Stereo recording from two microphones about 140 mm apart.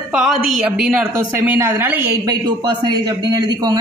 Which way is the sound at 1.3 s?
15° right (ahead or behind).